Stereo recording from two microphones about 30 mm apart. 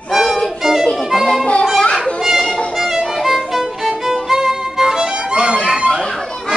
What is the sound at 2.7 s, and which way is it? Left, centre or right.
Violin, centre.